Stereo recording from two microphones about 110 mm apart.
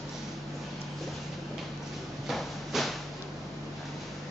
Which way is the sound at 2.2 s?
Centre (ahead or behind).